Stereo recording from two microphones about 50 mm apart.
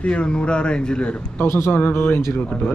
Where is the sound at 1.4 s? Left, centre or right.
Left.